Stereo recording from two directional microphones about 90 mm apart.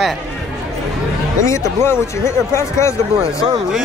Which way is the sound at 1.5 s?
30° left (ahead or behind).